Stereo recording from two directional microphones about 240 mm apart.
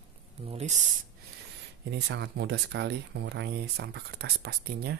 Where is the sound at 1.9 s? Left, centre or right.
Right.